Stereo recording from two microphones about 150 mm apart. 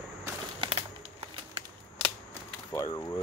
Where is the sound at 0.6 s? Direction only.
40° right (ahead or behind).